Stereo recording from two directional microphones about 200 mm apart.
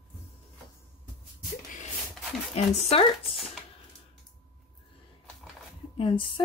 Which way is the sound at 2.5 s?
30° left (ahead or behind).